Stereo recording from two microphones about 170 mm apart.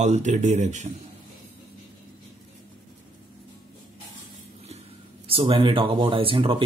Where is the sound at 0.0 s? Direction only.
45° right (ahead or behind).